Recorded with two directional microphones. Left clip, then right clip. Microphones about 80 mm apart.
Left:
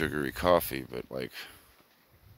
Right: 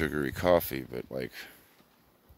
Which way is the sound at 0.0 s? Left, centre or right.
Right.